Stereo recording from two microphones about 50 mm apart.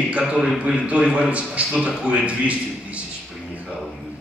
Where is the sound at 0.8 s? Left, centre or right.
Right.